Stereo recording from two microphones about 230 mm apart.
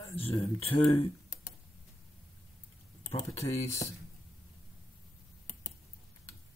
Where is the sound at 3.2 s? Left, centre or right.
Left.